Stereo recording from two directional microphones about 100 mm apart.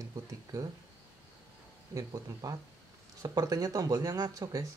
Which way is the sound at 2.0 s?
35° right (ahead or behind).